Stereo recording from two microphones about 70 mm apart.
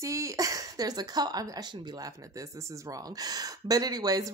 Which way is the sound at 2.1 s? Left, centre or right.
Right.